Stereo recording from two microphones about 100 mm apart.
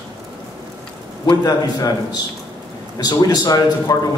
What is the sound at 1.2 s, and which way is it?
Speech, 40° left (ahead or behind).